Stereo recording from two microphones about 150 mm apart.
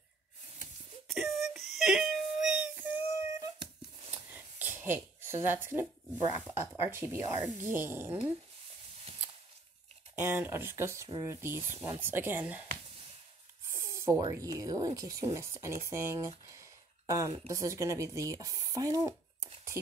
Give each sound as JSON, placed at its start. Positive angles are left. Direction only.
{"t": 1.0, "sound": "a sound", "side_deg": 0}
{"t": 6.5, "sound": "speech", "side_deg": -15}
{"t": 10.2, "sound": "speech", "side_deg": -15}
{"t": 11.1, "sound": "speech", "side_deg": -30}
{"t": 12.0, "sound": "speech", "side_deg": -15}
{"t": 13.7, "sound": "a sound", "side_deg": -20}
{"t": 14.3, "sound": "speech", "side_deg": -20}